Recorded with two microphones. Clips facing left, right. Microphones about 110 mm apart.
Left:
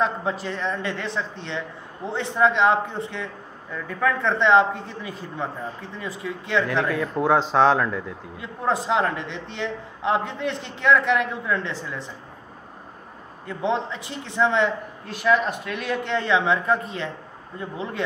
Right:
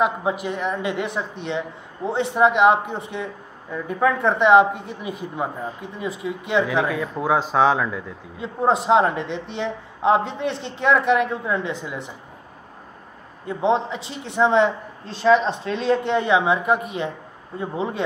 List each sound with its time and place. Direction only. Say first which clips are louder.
0.0 s a woman's voice: right 3 dB; 15° right (ahead or behind)
6.7 s speech: right 1 dB; 5° right (ahead or behind)
8.4 s a man's voice: right 5 dB; 20° right (ahead or behind)
13.5 s a man's voice: right 4 dB; 20° right (ahead or behind)